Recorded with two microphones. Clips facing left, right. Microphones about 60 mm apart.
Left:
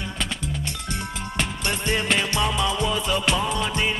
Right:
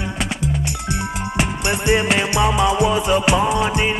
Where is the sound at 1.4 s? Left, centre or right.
Centre.